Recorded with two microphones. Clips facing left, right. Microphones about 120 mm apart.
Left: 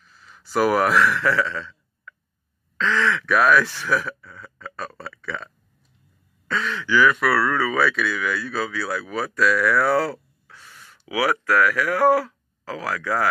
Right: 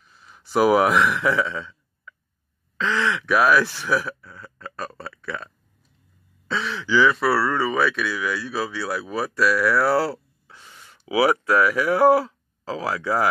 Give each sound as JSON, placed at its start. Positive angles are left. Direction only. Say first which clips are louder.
{"t": 0.0, "sound": "a sound", "louder": "even", "side_deg": -20}
{"t": 0.6, "sound": "speech", "louder": "right 1 dB", "side_deg": -15}
{"t": 6.8, "sound": "speech", "louder": "even", "side_deg": -20}
{"t": 7.4, "sound": "speech", "louder": "even", "side_deg": 0}
{"t": 10.5, "sound": "speech", "louder": "even", "side_deg": -15}